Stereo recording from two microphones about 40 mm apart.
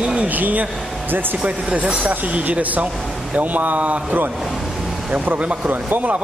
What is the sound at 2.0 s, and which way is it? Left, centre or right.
Speech, right.